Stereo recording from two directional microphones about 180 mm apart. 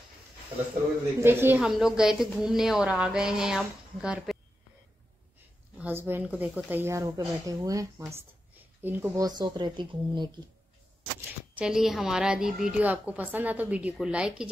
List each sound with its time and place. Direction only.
1.2 s a woman's voice: 10° right (ahead or behind)
5.8 s speech: 10° right (ahead or behind)
11.1 s speech: 10° right (ahead or behind)